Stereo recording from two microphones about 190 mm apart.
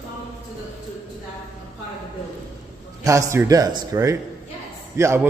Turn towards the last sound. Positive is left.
turn(degrees=-15)  # may be behind; listen again after turning